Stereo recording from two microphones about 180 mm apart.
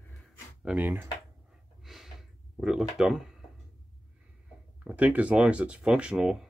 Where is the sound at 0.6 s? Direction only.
10° right (ahead or behind).